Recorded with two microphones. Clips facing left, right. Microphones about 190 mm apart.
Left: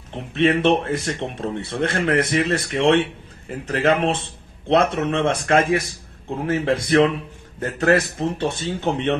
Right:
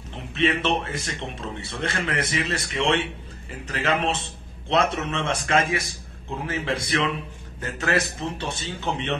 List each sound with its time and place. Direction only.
0.3 s speech: 55° left (ahead or behind)